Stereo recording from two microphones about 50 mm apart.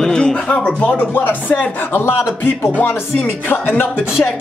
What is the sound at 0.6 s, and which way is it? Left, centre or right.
Speech, left.